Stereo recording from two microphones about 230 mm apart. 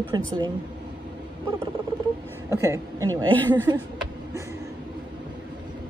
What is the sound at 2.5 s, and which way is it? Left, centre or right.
A woman's voice, centre.